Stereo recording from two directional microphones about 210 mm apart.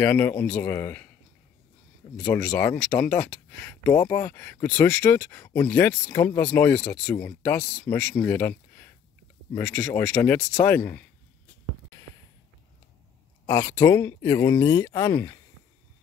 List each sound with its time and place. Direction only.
0.0 s speech: 10° left (ahead or behind)
2.1 s speech: 15° left (ahead or behind)
13.5 s speech: 15° left (ahead or behind)